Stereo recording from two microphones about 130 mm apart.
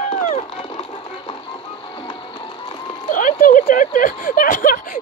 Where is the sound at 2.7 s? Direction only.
40° left (ahead or behind).